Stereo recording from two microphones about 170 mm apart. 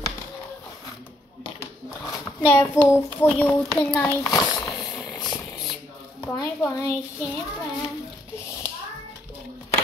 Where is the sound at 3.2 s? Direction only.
10° left (ahead or behind).